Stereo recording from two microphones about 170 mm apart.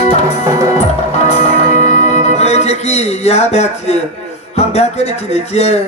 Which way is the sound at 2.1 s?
40° left (ahead or behind).